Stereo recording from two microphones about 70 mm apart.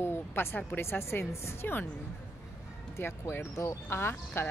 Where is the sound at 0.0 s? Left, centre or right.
Left.